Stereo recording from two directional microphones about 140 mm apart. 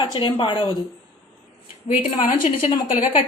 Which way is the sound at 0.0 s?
35° left (ahead or behind).